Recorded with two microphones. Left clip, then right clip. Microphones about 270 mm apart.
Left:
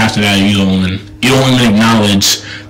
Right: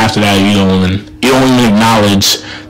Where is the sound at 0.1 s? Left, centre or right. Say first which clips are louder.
Right 2 dB; centre.